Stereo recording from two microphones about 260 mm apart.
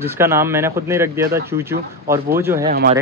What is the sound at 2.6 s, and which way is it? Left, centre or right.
Speech, right.